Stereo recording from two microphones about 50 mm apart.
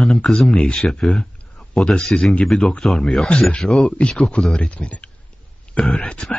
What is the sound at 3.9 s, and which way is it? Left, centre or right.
Speech, left.